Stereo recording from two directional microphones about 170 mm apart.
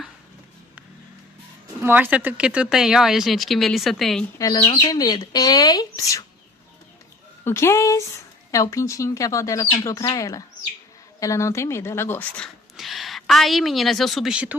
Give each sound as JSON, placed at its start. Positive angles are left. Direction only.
{"t": 1.8, "sound": "speech", "side_deg": -10}
{"t": 4.4, "sound": "a woman's voice", "side_deg": 25}
{"t": 7.4, "sound": "a woman's voice", "side_deg": 15}
{"t": 12.7, "sound": "a woman's voice", "side_deg": 0}